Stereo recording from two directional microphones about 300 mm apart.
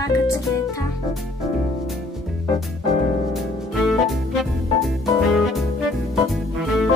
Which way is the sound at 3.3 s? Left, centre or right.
Centre.